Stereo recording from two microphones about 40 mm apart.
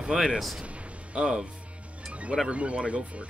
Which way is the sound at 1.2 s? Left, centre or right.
Right.